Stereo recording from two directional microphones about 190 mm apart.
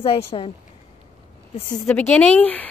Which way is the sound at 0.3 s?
30° left (ahead or behind).